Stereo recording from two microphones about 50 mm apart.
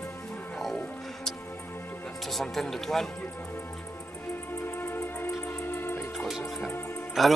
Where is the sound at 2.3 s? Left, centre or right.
Centre.